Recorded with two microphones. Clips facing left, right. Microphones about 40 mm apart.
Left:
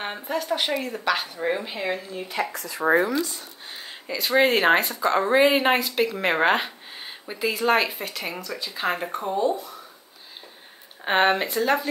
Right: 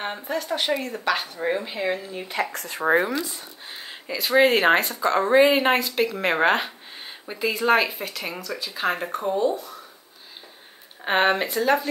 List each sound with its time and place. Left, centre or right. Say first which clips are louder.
0.0 s speech: even; centre
2.5 s speech: right 1 dB; right
2.9 s speech: even; right
3.3 s speech: right 1 dB; centre
11.1 s speech: even; centre